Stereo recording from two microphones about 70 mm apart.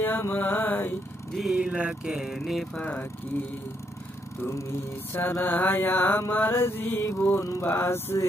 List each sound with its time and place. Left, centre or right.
0.0 s mantra: left
1.5 s mantra: centre
2.3 s a sound: centre
2.8 s speech: left
4.4 s mantra: left
7.1 s mantra: left
7.6 s mantra: left